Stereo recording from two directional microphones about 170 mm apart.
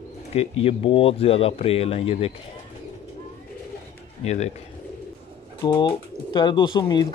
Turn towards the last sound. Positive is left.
turn(degrees=25)  # may be behind; listen again after turning